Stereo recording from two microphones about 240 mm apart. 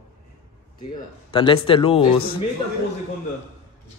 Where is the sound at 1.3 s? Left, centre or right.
Left.